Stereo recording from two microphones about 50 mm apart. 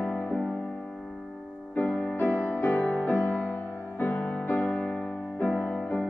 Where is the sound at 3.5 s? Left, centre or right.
Left.